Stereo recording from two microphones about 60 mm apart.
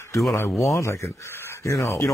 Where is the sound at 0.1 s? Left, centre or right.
Left.